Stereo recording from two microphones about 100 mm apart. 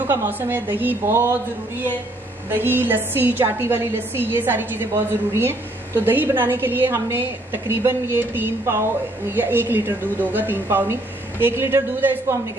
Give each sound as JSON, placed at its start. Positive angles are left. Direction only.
{"t": 0.1, "sound": "a woman's voice", "side_deg": -20}
{"t": 2.5, "sound": "a woman's voice", "side_deg": -20}